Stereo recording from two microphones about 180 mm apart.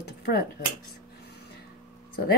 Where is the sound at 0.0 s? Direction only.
60° left (ahead or behind).